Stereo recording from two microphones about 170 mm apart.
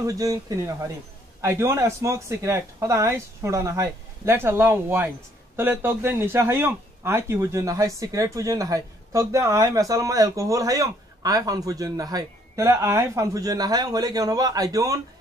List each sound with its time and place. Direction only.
0.0 s speech: 20° right (ahead or behind)